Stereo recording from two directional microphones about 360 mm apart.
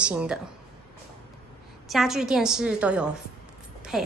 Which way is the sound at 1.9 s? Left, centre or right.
Centre.